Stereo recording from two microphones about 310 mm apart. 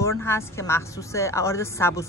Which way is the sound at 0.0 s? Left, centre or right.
Centre.